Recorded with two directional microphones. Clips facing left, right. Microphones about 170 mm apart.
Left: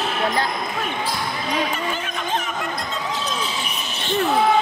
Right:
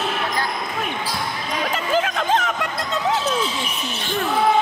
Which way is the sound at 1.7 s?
90° right.